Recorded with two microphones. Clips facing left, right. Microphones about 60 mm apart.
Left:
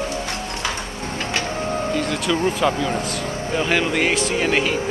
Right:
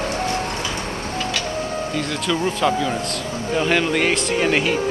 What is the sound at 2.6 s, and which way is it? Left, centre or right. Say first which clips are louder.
A man's voice: even; centre.